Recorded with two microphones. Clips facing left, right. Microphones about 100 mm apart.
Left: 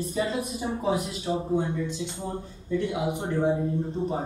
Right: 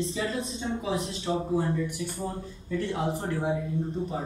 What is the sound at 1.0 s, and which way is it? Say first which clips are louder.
Speech: left 1 dB; 30° right (ahead or behind).